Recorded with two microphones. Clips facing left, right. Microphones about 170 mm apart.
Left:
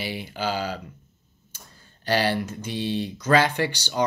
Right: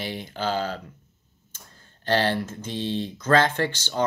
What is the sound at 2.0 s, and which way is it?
Speech, 10° left (ahead or behind).